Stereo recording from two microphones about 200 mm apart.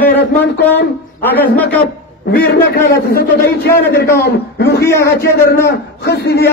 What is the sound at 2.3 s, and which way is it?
A man's voice, 50° left (ahead or behind).